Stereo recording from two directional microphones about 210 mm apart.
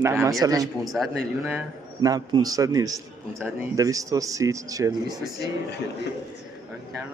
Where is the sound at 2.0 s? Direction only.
15° right (ahead or behind).